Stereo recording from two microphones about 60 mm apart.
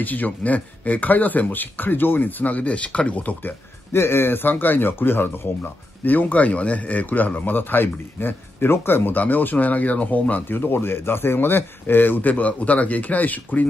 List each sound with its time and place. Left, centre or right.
0.0 s speech: left
3.9 s speech: left